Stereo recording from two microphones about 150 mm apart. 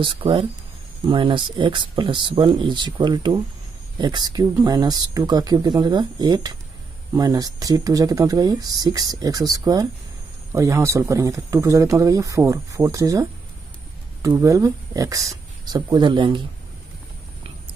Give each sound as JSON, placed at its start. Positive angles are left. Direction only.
{"t": 0.0, "sound": "speech", "side_deg": -35}